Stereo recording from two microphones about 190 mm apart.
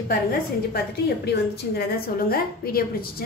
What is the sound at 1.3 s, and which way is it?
A woman's voice, 55° left (ahead or behind).